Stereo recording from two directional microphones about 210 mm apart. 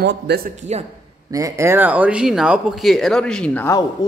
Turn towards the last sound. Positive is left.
turn(degrees=10)  # may be behind; listen again after turning